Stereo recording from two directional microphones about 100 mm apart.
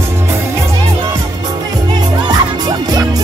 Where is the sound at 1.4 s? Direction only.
40° right (ahead or behind).